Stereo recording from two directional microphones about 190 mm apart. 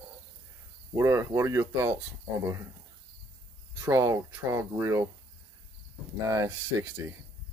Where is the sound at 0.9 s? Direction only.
15° right (ahead or behind).